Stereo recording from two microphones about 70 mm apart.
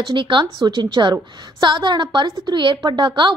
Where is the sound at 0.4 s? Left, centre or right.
Right.